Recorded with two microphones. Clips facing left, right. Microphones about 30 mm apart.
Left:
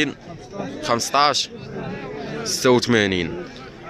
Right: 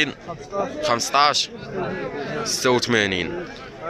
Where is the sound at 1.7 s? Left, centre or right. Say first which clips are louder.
Right 4 dB; centre.